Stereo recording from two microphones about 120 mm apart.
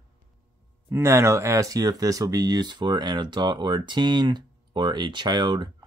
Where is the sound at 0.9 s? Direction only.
20° right (ahead or behind).